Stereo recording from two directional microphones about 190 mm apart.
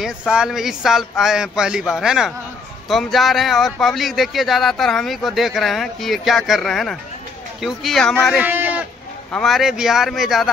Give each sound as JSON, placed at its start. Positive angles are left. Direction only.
{"t": 0.3, "sound": "speech", "side_deg": -5}
{"t": 8.4, "sound": "sheep", "side_deg": -10}
{"t": 9.3, "sound": "speech", "side_deg": 0}